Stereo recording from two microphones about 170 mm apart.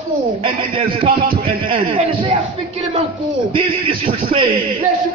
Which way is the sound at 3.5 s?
30° right (ahead or behind).